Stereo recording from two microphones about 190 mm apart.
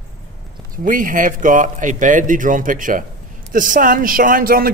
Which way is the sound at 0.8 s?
45° right (ahead or behind).